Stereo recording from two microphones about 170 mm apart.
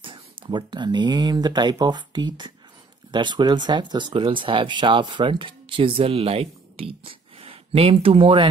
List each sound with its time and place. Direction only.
0.0 s speech: 30° right (ahead or behind)